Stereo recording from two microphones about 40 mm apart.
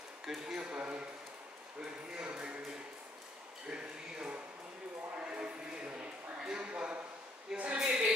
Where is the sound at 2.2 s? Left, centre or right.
Right.